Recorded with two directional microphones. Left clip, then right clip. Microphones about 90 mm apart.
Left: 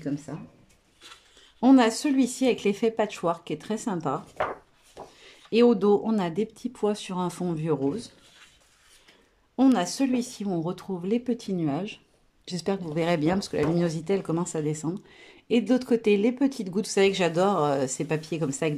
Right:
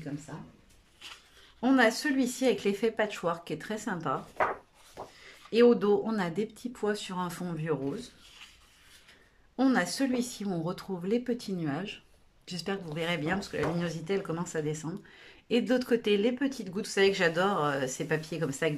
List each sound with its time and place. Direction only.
1.6 s speech: 50° left (ahead or behind)
5.2 s speech: 40° left (ahead or behind)
9.6 s speech: 30° left (ahead or behind)
12.4 s speech: 55° left (ahead or behind)
17.0 s speech: 40° left (ahead or behind)